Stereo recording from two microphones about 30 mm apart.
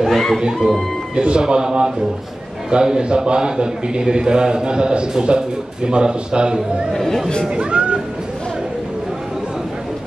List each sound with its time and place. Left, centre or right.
0.0 s music: centre
1.1 s a man's voice: right
6.9 s speech: centre
7.4 s a man's voice: right